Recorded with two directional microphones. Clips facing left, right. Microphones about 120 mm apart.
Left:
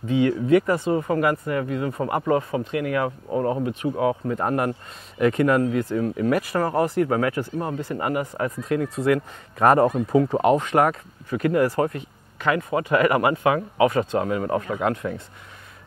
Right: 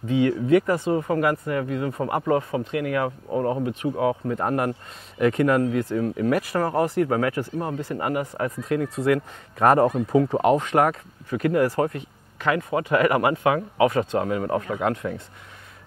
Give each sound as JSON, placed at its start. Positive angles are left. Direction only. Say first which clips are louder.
{"t": 0.1, "sound": "speech", "louder": "left 1 dB", "side_deg": 15}